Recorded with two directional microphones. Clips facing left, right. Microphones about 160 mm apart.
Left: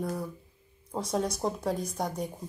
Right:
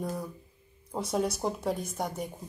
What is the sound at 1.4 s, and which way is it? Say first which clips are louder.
Speech: left 1 dB; centre (ahead or behind).